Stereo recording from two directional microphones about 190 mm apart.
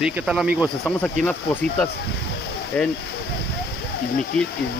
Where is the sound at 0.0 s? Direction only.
5° right (ahead or behind).